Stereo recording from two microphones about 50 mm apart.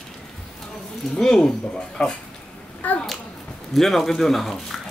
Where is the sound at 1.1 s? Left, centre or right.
Centre.